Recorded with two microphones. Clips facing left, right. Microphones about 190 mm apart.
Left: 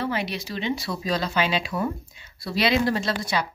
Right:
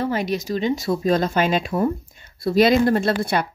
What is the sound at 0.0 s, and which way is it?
Speech, 45° right (ahead or behind).